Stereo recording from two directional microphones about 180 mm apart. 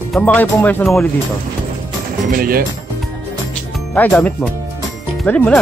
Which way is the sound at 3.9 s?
5° left (ahead or behind).